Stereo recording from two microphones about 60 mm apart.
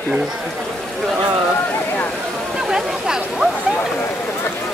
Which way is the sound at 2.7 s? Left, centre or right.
Centre.